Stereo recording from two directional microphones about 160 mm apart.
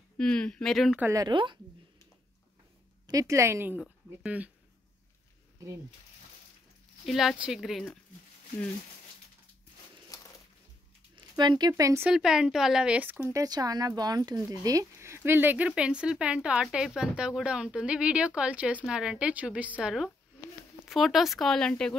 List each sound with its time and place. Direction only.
0.2 s speech: 5° left (ahead or behind)
1.0 s speech: 25° right (ahead or behind)
3.1 s speech: 20° right (ahead or behind)
7.1 s speech: centre (ahead or behind)
11.1 s speech: 25° right (ahead or behind)
12.1 s speech: 5° right (ahead or behind)
13.4 s speech: 25° right (ahead or behind); by 21.9 s 5° left (ahead or behind)